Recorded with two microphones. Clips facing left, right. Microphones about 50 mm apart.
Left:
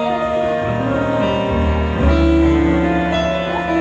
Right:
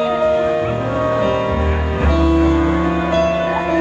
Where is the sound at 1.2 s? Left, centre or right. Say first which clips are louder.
Even; left.